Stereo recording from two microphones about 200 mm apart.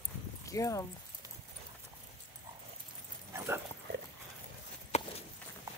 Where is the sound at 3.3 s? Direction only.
15° right (ahead or behind).